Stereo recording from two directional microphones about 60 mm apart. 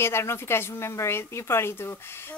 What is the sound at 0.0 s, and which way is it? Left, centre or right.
A woman's voice, left.